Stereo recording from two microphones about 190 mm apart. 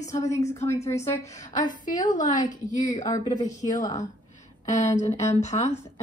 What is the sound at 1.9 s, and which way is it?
Speech, 40° left (ahead or behind).